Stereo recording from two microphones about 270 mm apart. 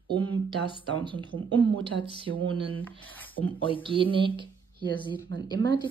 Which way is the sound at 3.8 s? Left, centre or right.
Centre.